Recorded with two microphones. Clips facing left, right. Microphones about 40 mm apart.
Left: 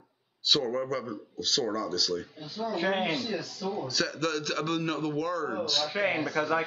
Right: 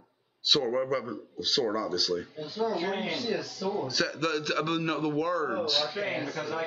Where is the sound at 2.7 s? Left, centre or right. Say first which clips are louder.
Left 2 dB; left.